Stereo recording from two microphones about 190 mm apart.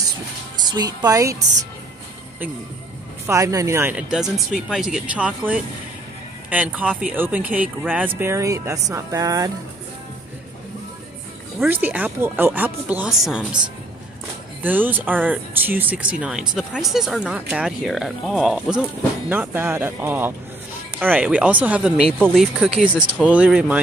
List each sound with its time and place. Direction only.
0.6 s speech: 20° right (ahead or behind)
3.3 s speech: 15° right (ahead or behind)
11.6 s speech: 10° right (ahead or behind)
14.6 s speech: 10° right (ahead or behind)